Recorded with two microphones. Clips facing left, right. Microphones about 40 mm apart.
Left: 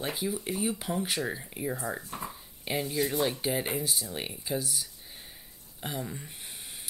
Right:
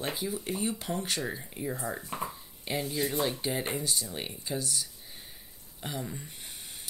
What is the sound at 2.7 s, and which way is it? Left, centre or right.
Speech, centre.